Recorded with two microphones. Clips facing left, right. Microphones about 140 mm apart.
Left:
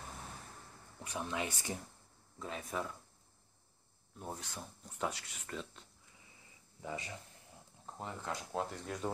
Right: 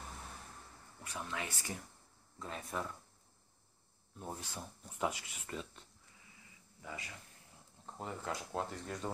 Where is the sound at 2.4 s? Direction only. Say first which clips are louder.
Left 1 dB; centre (ahead or behind).